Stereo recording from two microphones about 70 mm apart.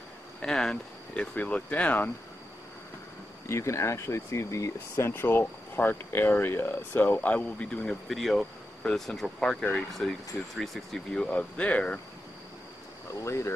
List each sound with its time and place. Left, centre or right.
0.4 s speech: centre
3.4 s speech: left; by 8.0 s centre
8.1 s speech: centre
13.1 s speech: left